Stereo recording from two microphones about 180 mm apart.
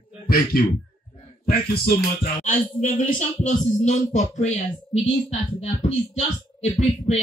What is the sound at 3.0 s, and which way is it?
Speech, 45° left (ahead or behind).